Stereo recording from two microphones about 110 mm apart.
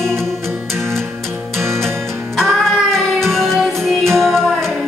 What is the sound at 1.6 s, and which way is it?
Music, 25° right (ahead or behind).